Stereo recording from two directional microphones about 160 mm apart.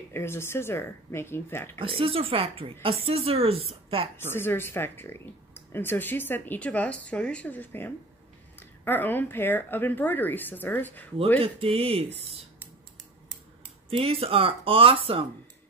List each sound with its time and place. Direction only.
0.1 s speech: 15° left (ahead or behind)
1.8 s a woman's voice: 35° right (ahead or behind)
4.3 s speech: 15° left (ahead or behind)
11.4 s a woman's voice: 35° right (ahead or behind)
13.8 s a woman's voice: 35° right (ahead or behind)